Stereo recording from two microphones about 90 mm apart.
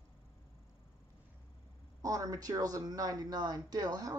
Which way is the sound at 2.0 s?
40° right (ahead or behind).